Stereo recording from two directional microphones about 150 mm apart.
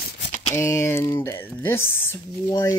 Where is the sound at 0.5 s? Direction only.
20° left (ahead or behind).